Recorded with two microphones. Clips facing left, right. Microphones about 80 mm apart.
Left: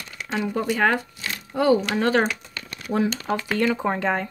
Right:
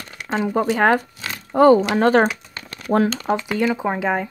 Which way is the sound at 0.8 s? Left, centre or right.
Right.